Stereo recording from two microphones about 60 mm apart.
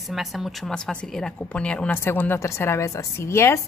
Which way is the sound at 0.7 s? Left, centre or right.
Centre.